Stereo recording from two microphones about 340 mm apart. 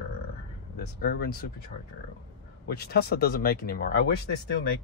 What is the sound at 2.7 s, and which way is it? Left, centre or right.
Speech, left.